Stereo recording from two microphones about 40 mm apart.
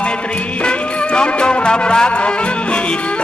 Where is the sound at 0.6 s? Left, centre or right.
Left.